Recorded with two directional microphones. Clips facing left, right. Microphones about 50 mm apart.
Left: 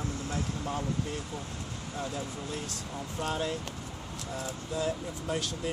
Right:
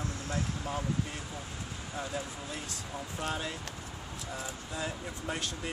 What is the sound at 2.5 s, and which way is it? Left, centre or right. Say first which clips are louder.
Speech: left 2 dB; centre.